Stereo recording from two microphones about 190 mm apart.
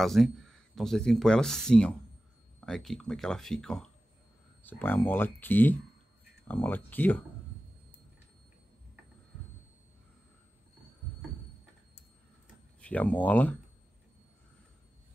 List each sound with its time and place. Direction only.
0.0 s speech: centre (ahead or behind)
12.8 s speech: 5° left (ahead or behind)